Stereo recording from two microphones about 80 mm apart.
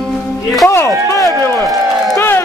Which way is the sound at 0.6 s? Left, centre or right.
Left.